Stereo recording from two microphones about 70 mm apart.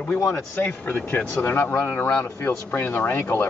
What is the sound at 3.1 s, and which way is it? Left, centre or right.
Speech, left.